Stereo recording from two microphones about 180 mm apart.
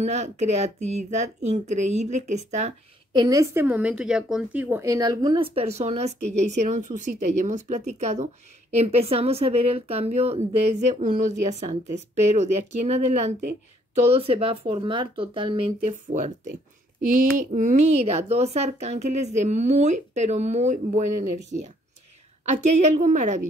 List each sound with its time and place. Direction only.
0.0 s a woman's voice: 40° right (ahead or behind)
3.1 s a woman's voice: 20° right (ahead or behind)
17.0 s a woman's voice: 50° right (ahead or behind)